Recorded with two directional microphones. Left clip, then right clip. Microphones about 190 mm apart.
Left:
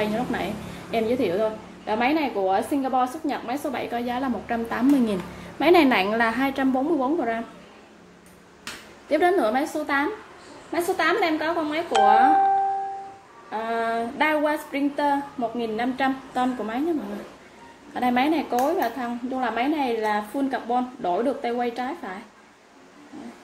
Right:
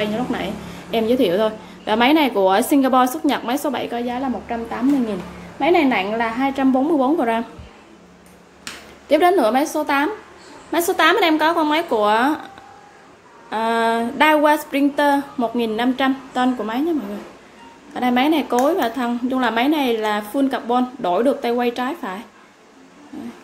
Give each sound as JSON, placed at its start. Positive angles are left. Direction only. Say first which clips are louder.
{"t": 0.0, "sound": "a woman's voice", "louder": "right 3 dB", "side_deg": -10}
{"t": 0.9, "sound": "a woman's voice", "louder": "right 6 dB", "side_deg": -20}
{"t": 4.0, "sound": "a woman's voice", "louder": "right 3 dB", "side_deg": 0}
{"t": 6.7, "sound": "a woman's voice", "louder": "right 6 dB", "side_deg": -15}
{"t": 9.1, "sound": "a woman's voice", "louder": "right 6 dB", "side_deg": -15}
{"t": 13.5, "sound": "a woman's voice", "louder": "right 7 dB", "side_deg": -25}
{"t": 17.9, "sound": "a woman's voice", "louder": "right 4 dB", "side_deg": -15}